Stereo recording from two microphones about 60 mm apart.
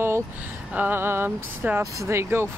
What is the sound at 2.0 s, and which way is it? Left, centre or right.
Speech, right.